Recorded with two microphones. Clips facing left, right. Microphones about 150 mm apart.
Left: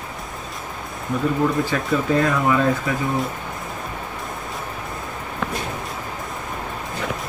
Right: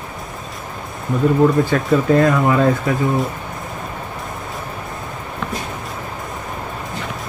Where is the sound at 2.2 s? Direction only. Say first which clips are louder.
Right 4 dB; 45° right (ahead or behind).